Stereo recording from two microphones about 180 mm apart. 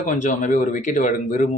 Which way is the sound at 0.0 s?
45° left (ahead or behind).